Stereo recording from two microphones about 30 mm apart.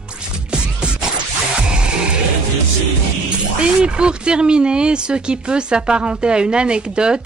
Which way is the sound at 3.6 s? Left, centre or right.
Right.